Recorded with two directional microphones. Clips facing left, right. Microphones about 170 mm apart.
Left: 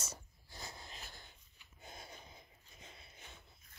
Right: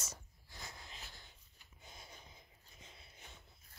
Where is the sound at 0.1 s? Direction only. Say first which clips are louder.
Left 3 dB; 30° left (ahead or behind).